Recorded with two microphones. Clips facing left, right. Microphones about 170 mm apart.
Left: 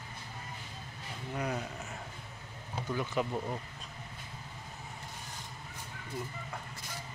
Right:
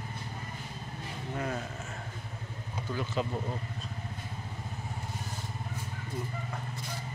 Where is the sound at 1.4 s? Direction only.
15° left (ahead or behind).